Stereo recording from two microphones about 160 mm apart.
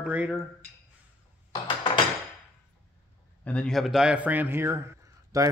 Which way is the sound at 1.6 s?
30° left (ahead or behind).